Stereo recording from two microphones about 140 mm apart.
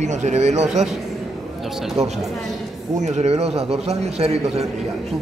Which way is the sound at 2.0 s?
50° right (ahead or behind).